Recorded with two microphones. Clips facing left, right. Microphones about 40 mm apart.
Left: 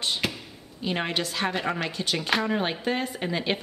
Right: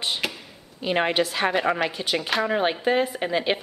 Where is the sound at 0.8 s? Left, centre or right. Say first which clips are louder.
Right 6 dB; centre.